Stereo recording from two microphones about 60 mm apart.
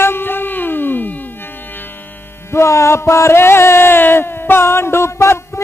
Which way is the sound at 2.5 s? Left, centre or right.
Left.